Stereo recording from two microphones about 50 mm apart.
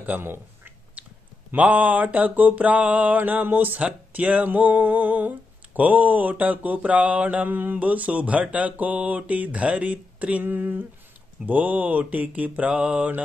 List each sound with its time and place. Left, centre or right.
0.2 s a sound: right
1.0 s clicking: right
1.5 s mantra: right
10.4 s speech: right
11.4 s mantra: right